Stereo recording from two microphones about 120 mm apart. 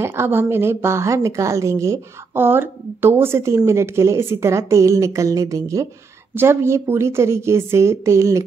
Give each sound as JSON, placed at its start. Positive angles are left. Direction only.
{"t": 0.0, "sound": "a woman's voice", "side_deg": -20}